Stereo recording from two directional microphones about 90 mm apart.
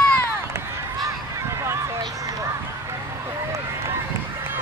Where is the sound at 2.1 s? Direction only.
40° right (ahead or behind).